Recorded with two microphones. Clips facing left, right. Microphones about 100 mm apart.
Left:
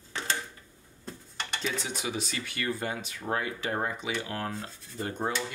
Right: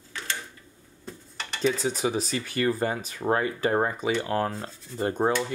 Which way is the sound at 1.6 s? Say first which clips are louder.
Right 10 dB; 40° right (ahead or behind).